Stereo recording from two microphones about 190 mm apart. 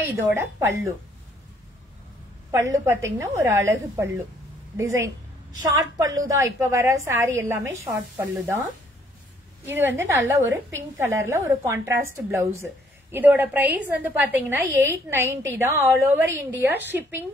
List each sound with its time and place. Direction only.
0.1 s a woman's voice: 10° right (ahead or behind)
2.5 s a woman's voice: 15° right (ahead or behind)
9.7 s a woman's voice: 10° right (ahead or behind)